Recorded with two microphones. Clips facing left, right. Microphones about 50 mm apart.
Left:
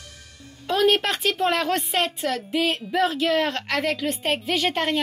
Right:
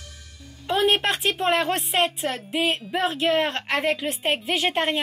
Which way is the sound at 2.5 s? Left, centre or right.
Right.